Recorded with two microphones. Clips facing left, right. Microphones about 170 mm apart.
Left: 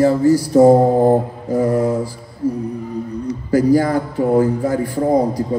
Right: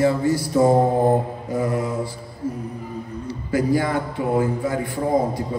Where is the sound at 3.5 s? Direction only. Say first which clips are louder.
Left 6 dB; 40° left (ahead or behind).